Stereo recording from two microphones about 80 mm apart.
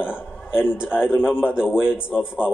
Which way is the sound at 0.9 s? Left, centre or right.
Left.